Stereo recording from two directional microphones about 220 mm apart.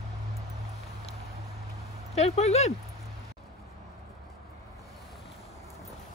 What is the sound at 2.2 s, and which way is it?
Speech, 30° left (ahead or behind).